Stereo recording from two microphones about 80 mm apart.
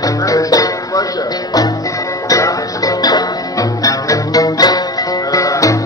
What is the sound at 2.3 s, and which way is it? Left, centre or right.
Music, left.